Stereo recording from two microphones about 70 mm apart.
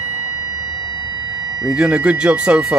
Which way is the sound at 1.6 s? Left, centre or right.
Centre.